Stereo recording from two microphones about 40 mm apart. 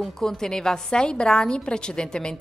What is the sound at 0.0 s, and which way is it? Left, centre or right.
A woman's voice, centre.